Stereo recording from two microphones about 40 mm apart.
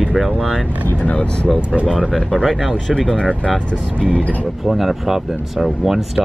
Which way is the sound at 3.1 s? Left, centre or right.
Left.